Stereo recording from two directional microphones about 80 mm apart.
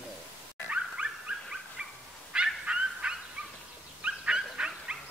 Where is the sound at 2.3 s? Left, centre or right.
Centre.